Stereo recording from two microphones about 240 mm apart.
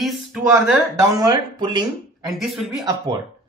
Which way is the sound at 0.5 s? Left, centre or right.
Centre.